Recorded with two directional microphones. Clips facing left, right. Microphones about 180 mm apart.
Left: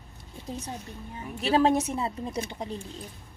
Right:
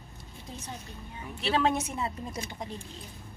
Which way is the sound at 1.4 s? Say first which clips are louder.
Left 5 dB; 40° left (ahead or behind).